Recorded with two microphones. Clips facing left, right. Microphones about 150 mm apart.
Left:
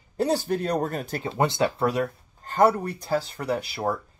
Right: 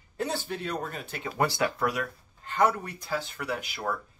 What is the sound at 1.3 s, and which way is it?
Speech, 25° left (ahead or behind).